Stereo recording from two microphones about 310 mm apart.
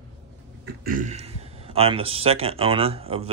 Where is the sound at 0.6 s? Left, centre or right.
Right.